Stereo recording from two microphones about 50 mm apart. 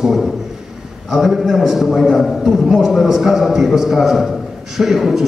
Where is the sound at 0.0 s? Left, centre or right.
Centre.